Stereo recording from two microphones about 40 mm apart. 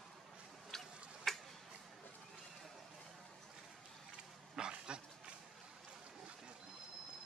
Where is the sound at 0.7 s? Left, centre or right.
Centre.